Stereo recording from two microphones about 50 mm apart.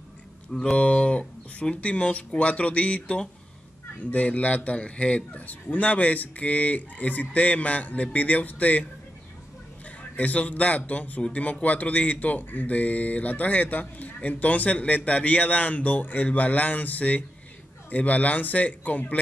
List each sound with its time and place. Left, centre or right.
0.5 s a man's voice: centre
10.1 s speech: left